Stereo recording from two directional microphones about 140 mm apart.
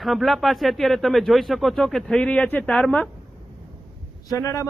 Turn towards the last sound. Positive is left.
turn(degrees=20)  # may be behind; listen again after turning